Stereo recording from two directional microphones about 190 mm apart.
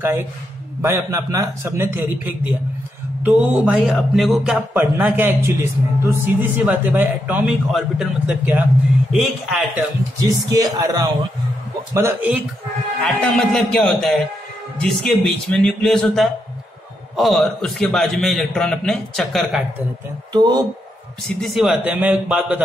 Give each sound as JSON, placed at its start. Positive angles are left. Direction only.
{"t": 0.8, "sound": "a man's voice", "side_deg": -15}
{"t": 10.2, "sound": "speech", "side_deg": -20}
{"t": 13.0, "sound": "a man's voice", "side_deg": 0}
{"t": 20.3, "sound": "speech", "side_deg": -20}
{"t": 21.4, "sound": "a man's voice", "side_deg": 0}